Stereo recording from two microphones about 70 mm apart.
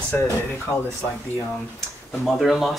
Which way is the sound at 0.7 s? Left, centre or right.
Left.